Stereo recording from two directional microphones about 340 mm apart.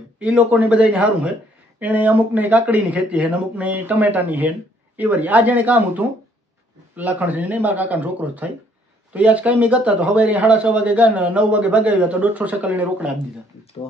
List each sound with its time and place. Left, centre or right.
0.2 s speech: centre